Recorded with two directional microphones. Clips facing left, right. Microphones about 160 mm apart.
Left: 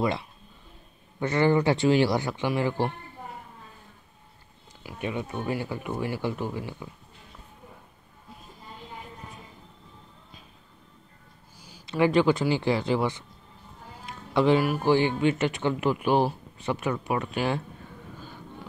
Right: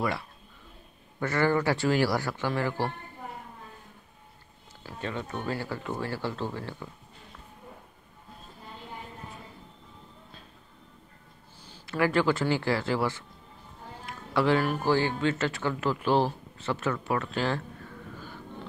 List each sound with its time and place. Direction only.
1.2 s speech: 20° left (ahead or behind)
4.8 s speech: 15° left (ahead or behind)
11.6 s speech: 15° left (ahead or behind)